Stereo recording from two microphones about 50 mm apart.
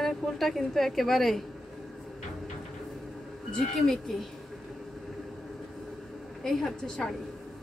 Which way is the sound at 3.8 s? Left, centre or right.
Centre.